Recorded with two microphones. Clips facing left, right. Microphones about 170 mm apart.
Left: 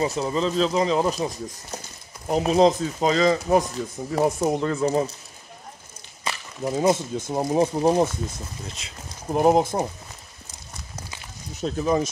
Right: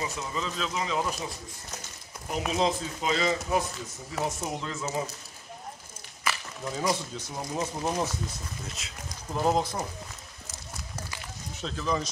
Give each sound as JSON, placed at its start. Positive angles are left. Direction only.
{"t": 0.0, "sound": "speech", "side_deg": 35}
{"t": 4.2, "sound": "speech", "side_deg": 60}
{"t": 6.2, "sound": "a sound", "side_deg": 30}
{"t": 7.0, "sound": "speech", "side_deg": 50}
{"t": 7.6, "sound": "speech", "side_deg": 30}
{"t": 8.8, "sound": "speech", "side_deg": 0}
{"t": 9.3, "sound": "speech", "side_deg": 55}
{"t": 11.5, "sound": "speech", "side_deg": 45}